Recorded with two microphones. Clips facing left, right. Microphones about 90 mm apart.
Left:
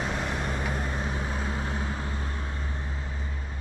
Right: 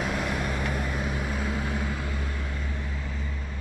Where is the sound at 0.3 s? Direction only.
30° left (ahead or behind).